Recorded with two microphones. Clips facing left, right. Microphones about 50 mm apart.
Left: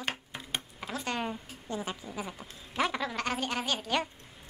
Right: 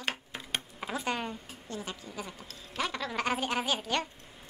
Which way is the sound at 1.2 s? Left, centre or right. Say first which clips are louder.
Left 3 dB; centre.